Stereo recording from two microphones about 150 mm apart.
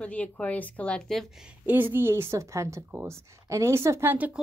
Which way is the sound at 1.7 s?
15° right (ahead or behind).